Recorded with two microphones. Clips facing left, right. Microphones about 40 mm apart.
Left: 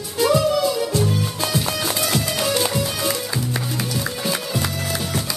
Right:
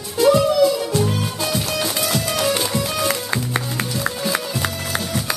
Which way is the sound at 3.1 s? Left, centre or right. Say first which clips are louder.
Right 2 dB; right.